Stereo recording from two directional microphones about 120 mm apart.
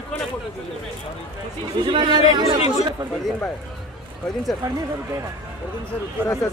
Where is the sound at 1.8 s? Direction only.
45° right (ahead or behind).